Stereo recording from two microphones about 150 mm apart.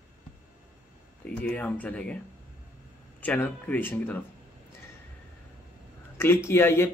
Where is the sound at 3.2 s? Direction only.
10° left (ahead or behind).